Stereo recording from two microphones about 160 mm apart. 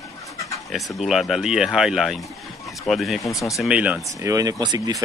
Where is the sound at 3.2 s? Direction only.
20° left (ahead or behind).